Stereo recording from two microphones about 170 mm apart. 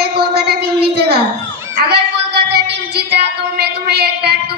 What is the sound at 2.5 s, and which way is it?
A woman's voice, 70° right (ahead or behind).